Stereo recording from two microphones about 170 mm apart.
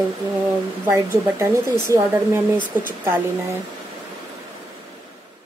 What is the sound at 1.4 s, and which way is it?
Speech, 15° right (ahead or behind).